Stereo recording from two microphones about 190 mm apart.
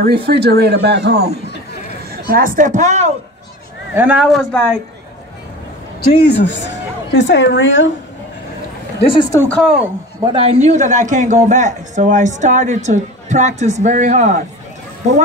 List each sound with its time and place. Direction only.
0.0 s speech: 55° right (ahead or behind)
2.2 s a woman's voice: 50° right (ahead or behind)
3.9 s a man's voice: 5° right (ahead or behind)
6.2 s a woman's voice: 65° left (ahead or behind)
9.1 s speech: 25° left (ahead or behind)
9.4 s a man's voice: 5° left (ahead or behind)
10.2 s a man's voice: 30° right (ahead or behind)